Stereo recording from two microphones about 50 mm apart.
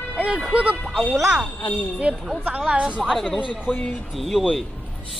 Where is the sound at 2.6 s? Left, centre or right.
Right.